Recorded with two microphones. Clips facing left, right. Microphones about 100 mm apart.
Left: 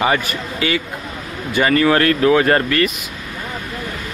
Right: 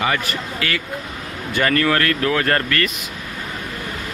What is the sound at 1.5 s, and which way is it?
Speech, 10° left (ahead or behind).